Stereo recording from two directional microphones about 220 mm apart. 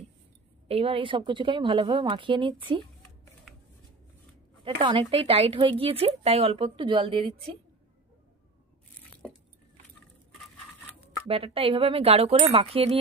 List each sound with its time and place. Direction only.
0.7 s speech: 25° right (ahead or behind)
4.6 s speech: 25° right (ahead or behind)
11.2 s speech: 25° right (ahead or behind)